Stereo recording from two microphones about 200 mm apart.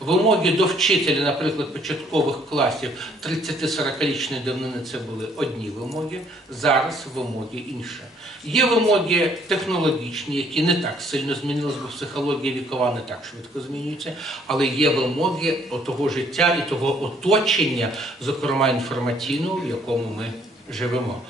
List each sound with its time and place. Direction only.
0.0 s a man's voice: centre (ahead or behind)
8.5 s a man's voice: centre (ahead or behind)
14.5 s a man's voice: centre (ahead or behind)